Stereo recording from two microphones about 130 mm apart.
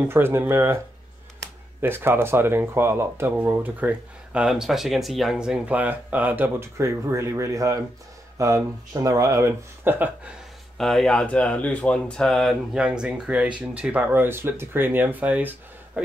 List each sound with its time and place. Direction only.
0.1 s speech: 20° right (ahead or behind)
1.8 s speech: 15° right (ahead or behind)
10.8 s speech: 5° left (ahead or behind)